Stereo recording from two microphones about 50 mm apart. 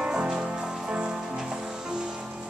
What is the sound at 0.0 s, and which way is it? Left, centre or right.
Music, centre.